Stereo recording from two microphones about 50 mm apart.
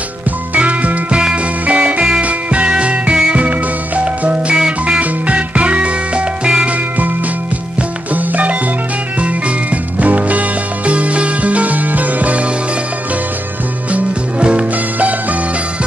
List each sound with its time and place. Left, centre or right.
0.6 s music: right
8.1 s music: right
13.9 s music: right